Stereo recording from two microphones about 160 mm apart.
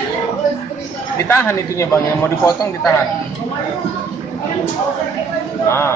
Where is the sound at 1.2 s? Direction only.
15° left (ahead or behind).